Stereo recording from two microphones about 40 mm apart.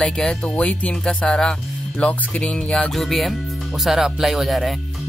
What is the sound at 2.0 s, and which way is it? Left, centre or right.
Speech, left.